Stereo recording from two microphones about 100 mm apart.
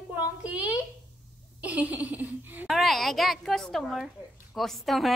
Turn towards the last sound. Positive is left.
turn(degrees=0)  # may be behind; listen again after turning